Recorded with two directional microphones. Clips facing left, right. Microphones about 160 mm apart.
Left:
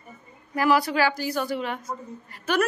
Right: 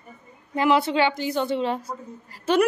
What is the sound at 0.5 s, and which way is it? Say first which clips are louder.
A woman's voice: right 1 dB; 25° right (ahead or behind).